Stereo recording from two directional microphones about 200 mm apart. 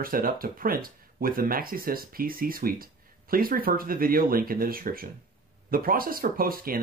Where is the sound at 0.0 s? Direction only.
45° right (ahead or behind).